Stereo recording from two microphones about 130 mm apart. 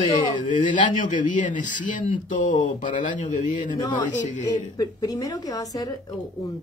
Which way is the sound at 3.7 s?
35° left (ahead or behind).